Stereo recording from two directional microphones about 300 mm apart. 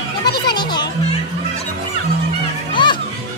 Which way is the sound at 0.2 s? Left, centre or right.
Centre.